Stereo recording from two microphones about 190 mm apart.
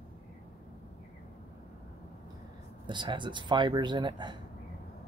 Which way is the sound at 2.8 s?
25° right (ahead or behind).